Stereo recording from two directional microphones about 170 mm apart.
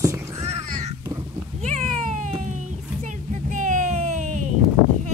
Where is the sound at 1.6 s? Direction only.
45° right (ahead or behind).